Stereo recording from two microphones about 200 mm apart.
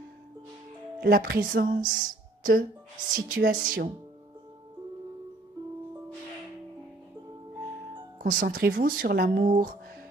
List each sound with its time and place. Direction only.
1.0 s speech: 50° right (ahead or behind)
2.0 s a sound: 45° right (ahead or behind)
3.1 s speech: 45° right (ahead or behind)
8.2 s speech: 45° right (ahead or behind)